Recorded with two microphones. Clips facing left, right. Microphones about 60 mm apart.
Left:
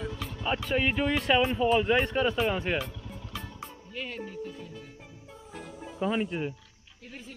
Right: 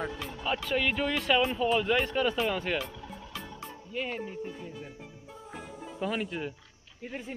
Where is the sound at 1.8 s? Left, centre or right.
Centre.